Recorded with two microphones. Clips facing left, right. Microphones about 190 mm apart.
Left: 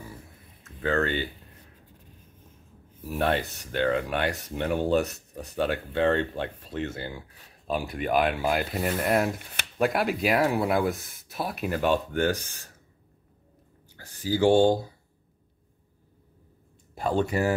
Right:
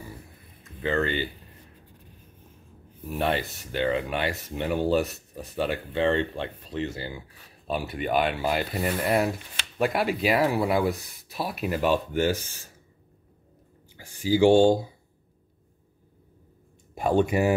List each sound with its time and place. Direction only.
0.8 s speech: centre (ahead or behind)
3.1 s speech: centre (ahead or behind)
13.9 s a sound: 10° right (ahead or behind)
14.7 s speech: 15° right (ahead or behind)
16.9 s speech: 15° right (ahead or behind)